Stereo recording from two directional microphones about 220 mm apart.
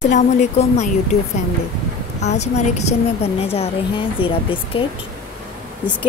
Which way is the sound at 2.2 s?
30° left (ahead or behind).